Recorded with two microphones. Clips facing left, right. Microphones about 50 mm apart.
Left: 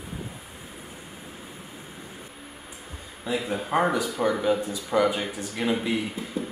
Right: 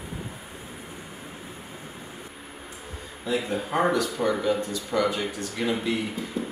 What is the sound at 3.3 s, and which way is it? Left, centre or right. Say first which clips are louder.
Speech: left 1 dB; centre.